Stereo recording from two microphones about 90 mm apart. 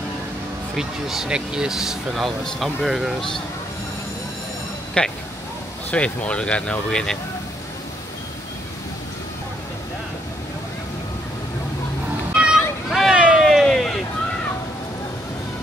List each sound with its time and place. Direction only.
0.7 s speech: 5° right (ahead or behind)
5.0 s speech: 10° left (ahead or behind)
12.4 s a sound: 10° right (ahead or behind)